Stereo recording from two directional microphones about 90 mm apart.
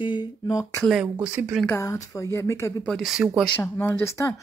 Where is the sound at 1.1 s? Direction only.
20° right (ahead or behind).